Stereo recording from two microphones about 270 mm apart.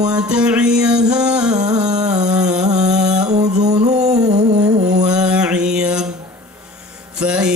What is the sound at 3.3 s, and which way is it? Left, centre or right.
Music, right.